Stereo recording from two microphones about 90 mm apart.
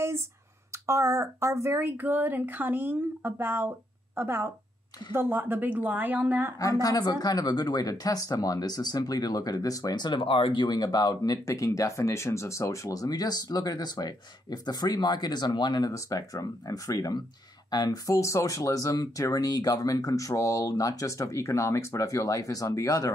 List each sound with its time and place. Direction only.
0.8 s speech: 35° right (ahead or behind); by 6.5 s 20° right (ahead or behind)
6.6 s speech: 40° left (ahead or behind)
18.1 s speech: 35° left (ahead or behind)